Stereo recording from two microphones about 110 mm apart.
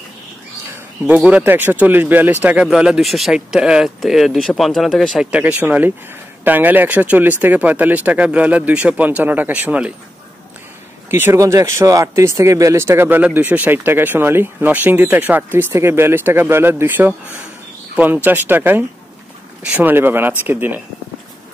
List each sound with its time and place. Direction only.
1.0 s speech: 10° right (ahead or behind)
2.6 s speech: 5° right (ahead or behind)
5.3 s speech: 15° right (ahead or behind)
11.1 s speech: 20° right (ahead or behind)